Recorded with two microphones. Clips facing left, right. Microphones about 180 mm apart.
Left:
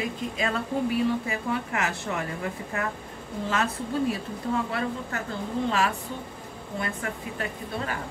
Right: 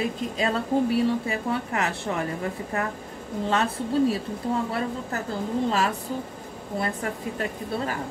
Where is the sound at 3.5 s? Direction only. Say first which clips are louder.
Right 3 dB; 35° right (ahead or behind).